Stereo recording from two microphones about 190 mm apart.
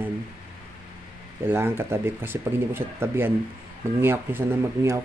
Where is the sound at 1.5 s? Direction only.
10° right (ahead or behind).